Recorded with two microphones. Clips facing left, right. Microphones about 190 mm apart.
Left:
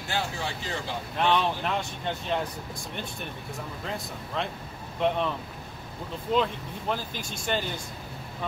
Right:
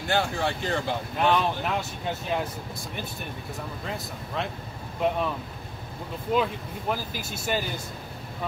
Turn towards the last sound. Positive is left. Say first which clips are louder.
# right 1 dB
turn(degrees=-5)  # may be behind; listen again after turning